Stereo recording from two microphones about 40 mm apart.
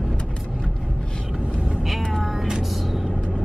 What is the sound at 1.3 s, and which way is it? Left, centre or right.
Vehicle, right.